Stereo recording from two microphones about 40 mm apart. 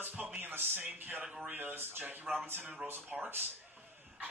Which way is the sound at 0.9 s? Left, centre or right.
Right.